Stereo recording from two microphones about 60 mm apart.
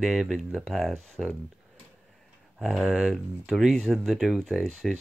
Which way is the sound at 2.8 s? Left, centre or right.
Centre.